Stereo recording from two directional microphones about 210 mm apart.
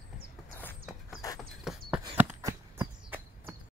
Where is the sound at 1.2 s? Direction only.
15° left (ahead or behind).